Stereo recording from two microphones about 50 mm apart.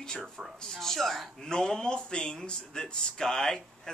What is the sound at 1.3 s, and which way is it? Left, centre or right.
A woman's voice, centre.